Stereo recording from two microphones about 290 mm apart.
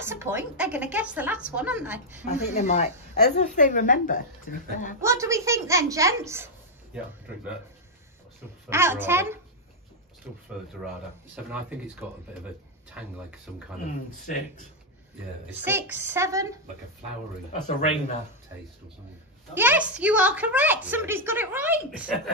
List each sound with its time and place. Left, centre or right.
0.0 s a woman's voice: centre
2.2 s speech: left
5.0 s a woman's voice: centre
8.6 s a woman's voice: centre
11.3 s a woman's voice: centre
15.5 s a woman's voice: centre
17.5 s speech: left
19.5 s a woman's voice: centre